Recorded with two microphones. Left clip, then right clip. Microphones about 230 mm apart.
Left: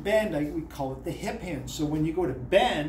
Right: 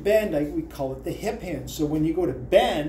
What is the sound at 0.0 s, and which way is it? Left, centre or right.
Speech, centre.